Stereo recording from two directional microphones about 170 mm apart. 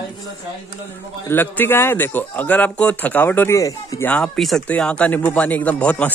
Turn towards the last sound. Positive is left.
turn(degrees=10)  # may be behind; listen again after turning